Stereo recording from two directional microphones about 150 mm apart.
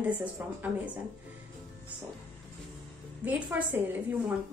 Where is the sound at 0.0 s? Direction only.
10° right (ahead or behind).